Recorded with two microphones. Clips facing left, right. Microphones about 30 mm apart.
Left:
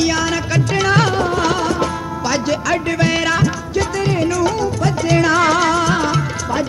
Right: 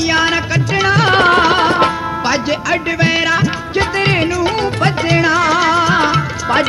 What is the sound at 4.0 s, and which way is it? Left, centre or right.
Music, right.